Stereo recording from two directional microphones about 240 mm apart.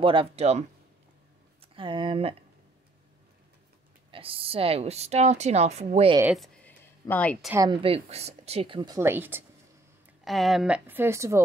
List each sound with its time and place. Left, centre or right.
0.0 s speech: right
4.1 s speech: right
6.3 s a sound: centre
7.5 s a woman's voice: centre